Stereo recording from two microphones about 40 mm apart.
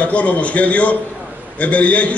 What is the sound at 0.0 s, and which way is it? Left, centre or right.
A man's voice, left.